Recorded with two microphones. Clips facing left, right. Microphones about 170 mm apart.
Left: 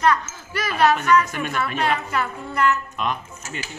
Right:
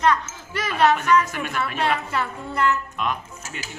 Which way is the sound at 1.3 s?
Centre (ahead or behind).